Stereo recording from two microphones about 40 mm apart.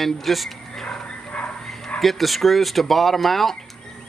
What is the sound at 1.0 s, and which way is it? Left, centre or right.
Bow-wow, left.